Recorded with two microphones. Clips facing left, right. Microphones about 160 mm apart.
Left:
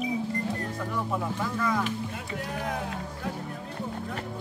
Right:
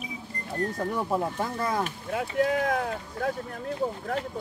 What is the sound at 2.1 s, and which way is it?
Speech, 75° right (ahead or behind).